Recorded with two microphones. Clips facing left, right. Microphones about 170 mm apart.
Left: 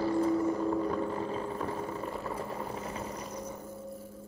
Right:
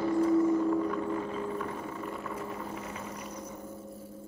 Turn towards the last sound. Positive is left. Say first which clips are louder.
# left 2 dB
turn(degrees=30)  # may be behind; listen again after turning